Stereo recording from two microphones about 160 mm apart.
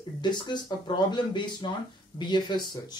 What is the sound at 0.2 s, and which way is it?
Speech, 25° left (ahead or behind).